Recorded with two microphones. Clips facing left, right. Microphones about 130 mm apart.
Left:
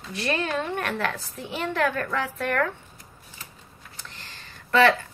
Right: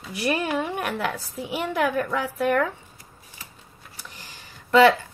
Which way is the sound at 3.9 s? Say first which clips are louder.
Right 1 dB; 10° right (ahead or behind).